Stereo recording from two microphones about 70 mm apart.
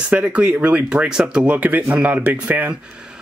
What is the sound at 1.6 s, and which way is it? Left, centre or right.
Speech, right.